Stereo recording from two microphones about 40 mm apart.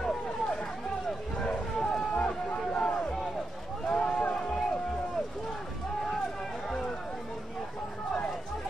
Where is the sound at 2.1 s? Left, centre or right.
Left.